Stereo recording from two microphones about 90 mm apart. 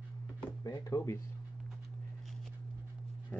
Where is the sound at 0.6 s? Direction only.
40° left (ahead or behind).